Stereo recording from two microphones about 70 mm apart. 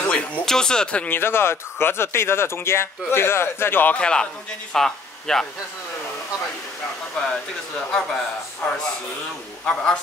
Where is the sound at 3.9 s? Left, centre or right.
Centre.